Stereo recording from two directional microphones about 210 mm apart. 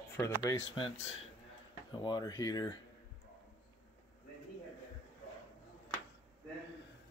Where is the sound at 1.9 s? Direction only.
20° left (ahead or behind).